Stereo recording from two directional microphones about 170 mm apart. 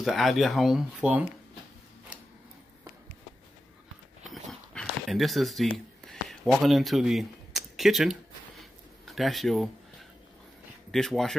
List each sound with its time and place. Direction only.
0.0 s speech: centre (ahead or behind)
2.1 s a sound: 10° right (ahead or behind)
4.3 s dog: centre (ahead or behind)
9.0 s speech: centre (ahead or behind)
10.9 s speech: centre (ahead or behind)